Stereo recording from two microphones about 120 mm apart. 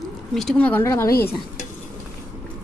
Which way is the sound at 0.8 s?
20° left (ahead or behind).